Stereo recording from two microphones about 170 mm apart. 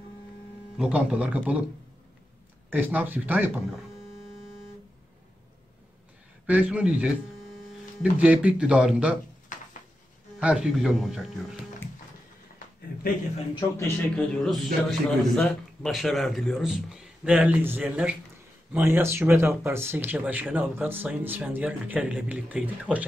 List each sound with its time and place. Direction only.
0.7 s speech: 5° right (ahead or behind)
2.7 s speech: 10° right (ahead or behind)
6.4 s speech: 10° right (ahead or behind)
9.5 s a sound: 50° left (ahead or behind)
10.4 s a man's voice: 5° right (ahead or behind)
14.1 s a man's voice: centre (ahead or behind)